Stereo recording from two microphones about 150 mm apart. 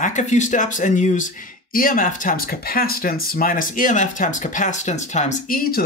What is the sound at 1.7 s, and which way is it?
Speech, 65° left (ahead or behind).